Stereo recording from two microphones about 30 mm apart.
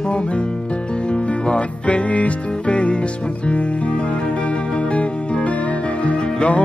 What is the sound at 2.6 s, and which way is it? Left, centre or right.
Music, left.